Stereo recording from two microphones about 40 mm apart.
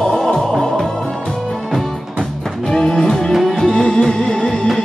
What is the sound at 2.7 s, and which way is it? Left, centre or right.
Music, centre.